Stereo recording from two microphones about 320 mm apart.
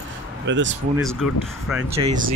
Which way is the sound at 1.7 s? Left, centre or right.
Centre.